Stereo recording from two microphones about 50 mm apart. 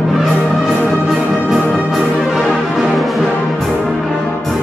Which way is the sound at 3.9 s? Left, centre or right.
Centre.